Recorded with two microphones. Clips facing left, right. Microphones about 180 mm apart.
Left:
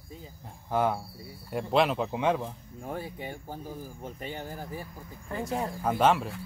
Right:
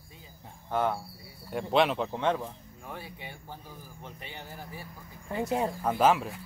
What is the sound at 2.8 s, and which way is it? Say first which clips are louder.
Speech: left 6 dB; 45° left (ahead or behind).